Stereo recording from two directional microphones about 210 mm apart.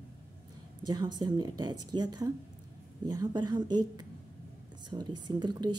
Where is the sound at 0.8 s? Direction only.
20° right (ahead or behind).